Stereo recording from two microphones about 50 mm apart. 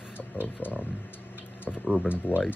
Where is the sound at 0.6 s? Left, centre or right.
Left.